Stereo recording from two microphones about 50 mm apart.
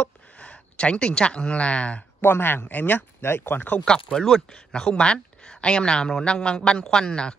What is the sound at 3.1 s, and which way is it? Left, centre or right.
Speech, left.